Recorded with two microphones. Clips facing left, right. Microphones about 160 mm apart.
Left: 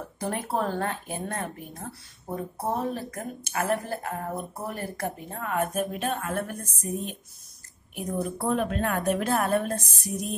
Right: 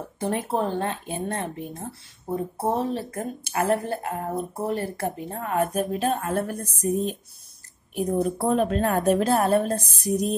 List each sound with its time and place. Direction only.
0.2 s a woman's voice: 20° right (ahead or behind)